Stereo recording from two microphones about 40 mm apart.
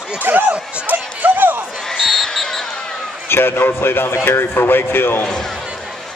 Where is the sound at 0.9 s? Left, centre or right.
Right.